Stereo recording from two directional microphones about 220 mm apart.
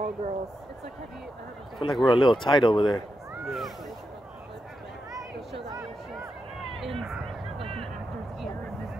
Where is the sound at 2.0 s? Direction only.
20° left (ahead or behind).